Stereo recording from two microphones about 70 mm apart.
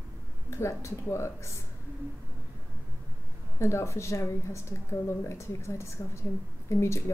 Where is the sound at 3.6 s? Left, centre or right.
Left.